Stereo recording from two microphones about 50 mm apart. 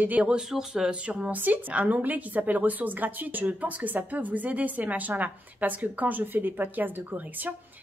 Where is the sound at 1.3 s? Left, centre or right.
Right.